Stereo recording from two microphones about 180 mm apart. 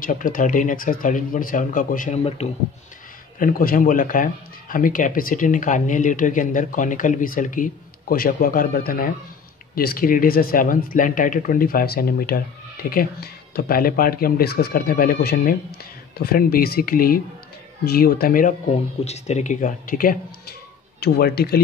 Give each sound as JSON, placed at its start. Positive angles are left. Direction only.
{"t": 0.0, "sound": "speech", "side_deg": 50}
{"t": 2.2, "sound": "speech", "side_deg": 35}
{"t": 3.3, "sound": "speech", "side_deg": 50}
{"t": 19.0, "sound": "speech", "side_deg": 40}